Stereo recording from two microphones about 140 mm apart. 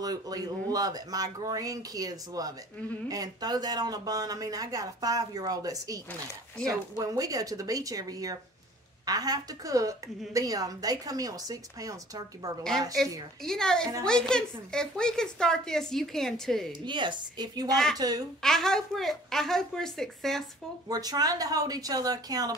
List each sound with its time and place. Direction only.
0.0 s a woman's voice: 25° right (ahead or behind)
7.0 s a woman's voice: 25° right (ahead or behind)
13.0 s speech: centre (ahead or behind)
16.8 s a woman's voice: 35° right (ahead or behind)
18.4 s speech: 5° left (ahead or behind)
20.9 s a woman's voice: 25° right (ahead or behind)